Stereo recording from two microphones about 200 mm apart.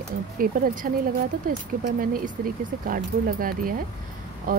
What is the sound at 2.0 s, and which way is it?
Speech, 45° right (ahead or behind).